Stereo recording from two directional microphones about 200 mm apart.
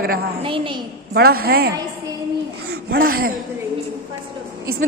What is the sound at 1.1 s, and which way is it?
Speech, 50° right (ahead or behind).